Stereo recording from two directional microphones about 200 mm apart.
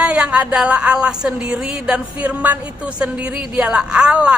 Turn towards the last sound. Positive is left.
turn(degrees=-5)  # may be behind; listen again after turning